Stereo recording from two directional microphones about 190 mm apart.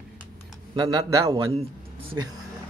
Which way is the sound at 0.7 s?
20° right (ahead or behind).